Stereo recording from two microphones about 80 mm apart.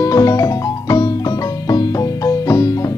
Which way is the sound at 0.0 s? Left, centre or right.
Left.